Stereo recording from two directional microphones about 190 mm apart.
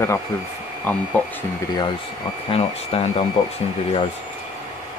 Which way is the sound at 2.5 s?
30° left (ahead or behind).